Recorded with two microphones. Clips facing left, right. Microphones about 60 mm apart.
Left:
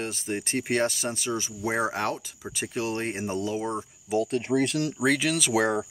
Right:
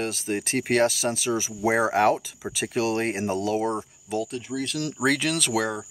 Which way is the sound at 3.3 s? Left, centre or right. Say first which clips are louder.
Right 3 dB; right.